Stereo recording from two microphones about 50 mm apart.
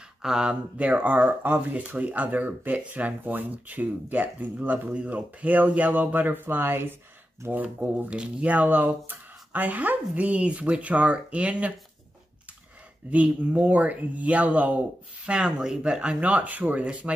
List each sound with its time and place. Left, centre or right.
0.2 s speech: centre
0.7 s speech: right
1.7 s speech: right
7.5 s speech: right
8.1 s speech: centre
8.5 s speech: right
13.1 s speech: right